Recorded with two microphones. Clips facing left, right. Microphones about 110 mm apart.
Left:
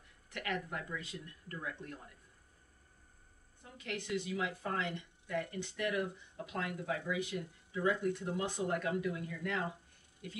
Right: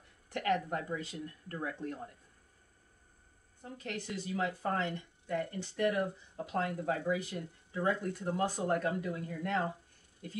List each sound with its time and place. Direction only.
0.3 s speech: 35° right (ahead or behind)
3.7 s speech: 35° right (ahead or behind)